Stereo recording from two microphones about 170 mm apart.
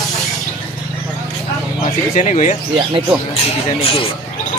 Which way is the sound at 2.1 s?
45° left (ahead or behind).